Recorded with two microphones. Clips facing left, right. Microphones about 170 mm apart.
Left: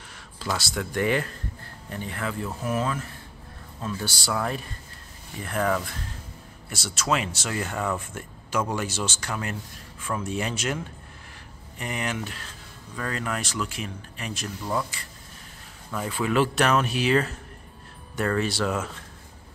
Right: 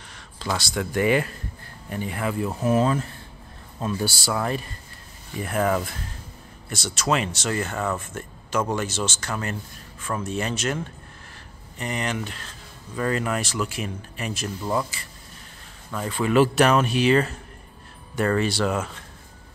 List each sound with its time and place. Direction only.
0.1 s a sound: 5° left (ahead or behind)
0.9 s speech: 10° right (ahead or behind)
2.6 s speech: 30° right (ahead or behind)
4.2 s speech: 5° right (ahead or behind)
6.7 s speech: 5° left (ahead or behind)
12.9 s speech: 5° right (ahead or behind)
15.9 s speech: 5° left (ahead or behind)